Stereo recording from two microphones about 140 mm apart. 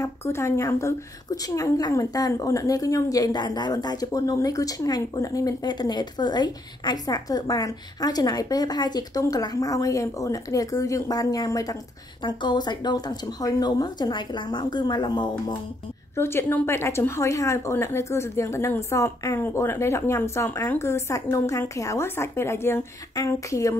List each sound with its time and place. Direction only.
0.0 s a woman's voice: 20° left (ahead or behind)
16.2 s a woman's voice: 15° left (ahead or behind)